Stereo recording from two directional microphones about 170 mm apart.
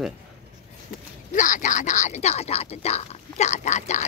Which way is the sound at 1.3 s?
50° left (ahead or behind).